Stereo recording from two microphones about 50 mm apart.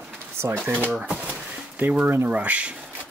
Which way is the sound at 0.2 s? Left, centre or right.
Right.